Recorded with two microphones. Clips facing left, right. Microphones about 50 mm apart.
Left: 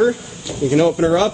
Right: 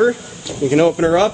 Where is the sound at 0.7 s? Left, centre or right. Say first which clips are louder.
Right 1 dB; right.